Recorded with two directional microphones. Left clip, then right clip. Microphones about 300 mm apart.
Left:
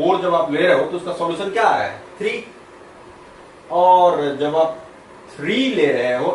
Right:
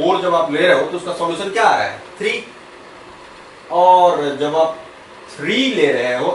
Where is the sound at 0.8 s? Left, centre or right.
Left.